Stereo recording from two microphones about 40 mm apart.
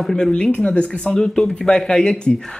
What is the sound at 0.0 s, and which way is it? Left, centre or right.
Speech, centre.